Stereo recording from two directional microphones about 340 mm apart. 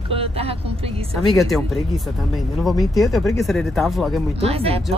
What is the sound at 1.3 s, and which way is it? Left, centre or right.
Speech, centre.